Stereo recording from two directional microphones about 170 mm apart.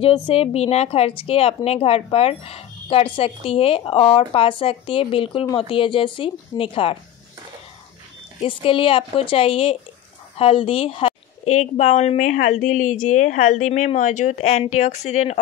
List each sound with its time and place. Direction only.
0.0 s a woman's voice: 35° left (ahead or behind)
8.5 s a woman's voice: 30° left (ahead or behind)